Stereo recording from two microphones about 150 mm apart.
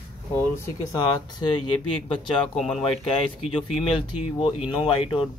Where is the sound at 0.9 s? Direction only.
30° left (ahead or behind).